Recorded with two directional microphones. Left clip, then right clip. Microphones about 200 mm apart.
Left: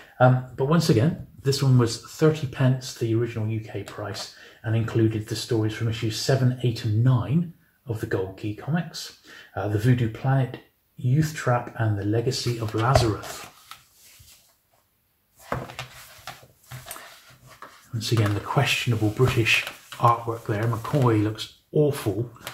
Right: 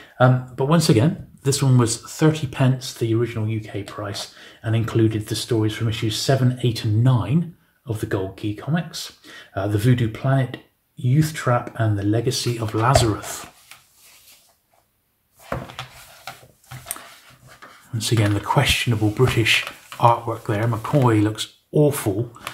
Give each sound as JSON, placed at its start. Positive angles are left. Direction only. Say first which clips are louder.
{"t": 0.2, "sound": "speech", "louder": "right 2 dB", "side_deg": -35}
{"t": 17.9, "sound": "speech", "louder": "right 4 dB", "side_deg": -25}